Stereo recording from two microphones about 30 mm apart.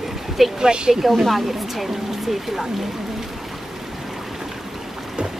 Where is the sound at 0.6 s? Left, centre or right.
Right.